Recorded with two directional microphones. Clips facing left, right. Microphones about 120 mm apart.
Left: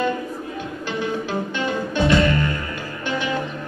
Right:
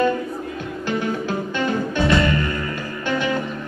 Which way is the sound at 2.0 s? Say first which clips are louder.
Left 2 dB; 25° left (ahead or behind).